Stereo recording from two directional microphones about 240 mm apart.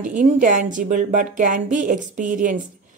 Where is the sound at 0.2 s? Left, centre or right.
Right.